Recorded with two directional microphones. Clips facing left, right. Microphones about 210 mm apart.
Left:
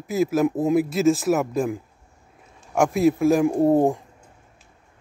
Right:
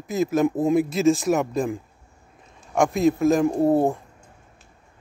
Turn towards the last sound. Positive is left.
turn(degrees=15)  # may be behind; listen again after turning